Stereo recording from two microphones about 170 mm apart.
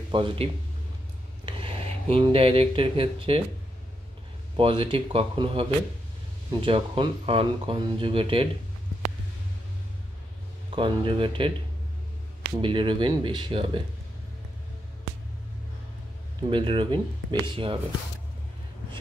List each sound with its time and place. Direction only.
0.1 s speech: 30° right (ahead or behind)
4.6 s speech: 30° right (ahead or behind)
10.7 s speech: 30° right (ahead or behind)
12.5 s speech: 30° right (ahead or behind)
16.4 s speech: 30° right (ahead or behind)